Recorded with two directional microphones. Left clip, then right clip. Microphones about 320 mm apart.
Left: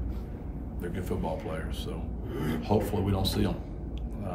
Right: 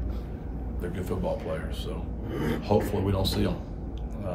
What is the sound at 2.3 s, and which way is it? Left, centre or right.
Speech, right.